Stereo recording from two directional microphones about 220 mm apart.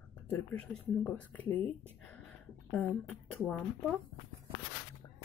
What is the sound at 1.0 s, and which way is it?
Speech, 10° left (ahead or behind).